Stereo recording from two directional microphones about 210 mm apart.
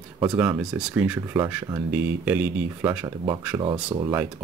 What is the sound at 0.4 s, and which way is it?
Speech, 5° right (ahead or behind).